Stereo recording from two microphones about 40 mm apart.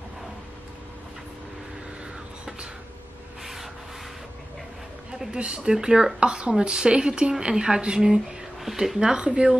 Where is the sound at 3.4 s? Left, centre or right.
Centre.